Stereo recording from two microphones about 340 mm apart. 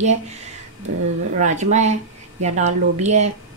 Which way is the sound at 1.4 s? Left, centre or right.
Right.